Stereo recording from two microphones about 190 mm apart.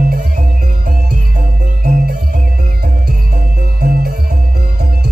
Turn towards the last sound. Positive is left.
turn(degrees=-55)  # may be behind; listen again after turning